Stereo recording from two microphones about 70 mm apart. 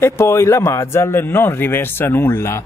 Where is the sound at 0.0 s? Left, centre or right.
Left.